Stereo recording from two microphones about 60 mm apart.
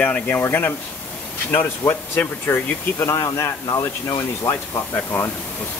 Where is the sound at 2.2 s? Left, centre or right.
Left.